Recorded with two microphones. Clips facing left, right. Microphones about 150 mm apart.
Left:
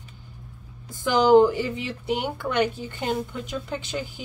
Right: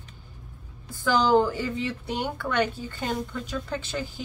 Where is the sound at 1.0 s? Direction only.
20° left (ahead or behind).